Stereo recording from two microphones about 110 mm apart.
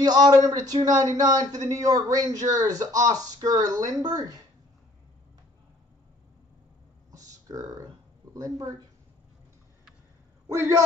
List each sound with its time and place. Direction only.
0.0 s speech: 35° right (ahead or behind)
7.4 s speech: 30° right (ahead or behind)
10.5 s a man's voice: 30° right (ahead or behind)